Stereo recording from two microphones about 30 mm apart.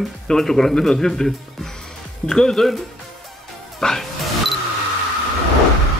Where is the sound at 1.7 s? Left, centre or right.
Centre.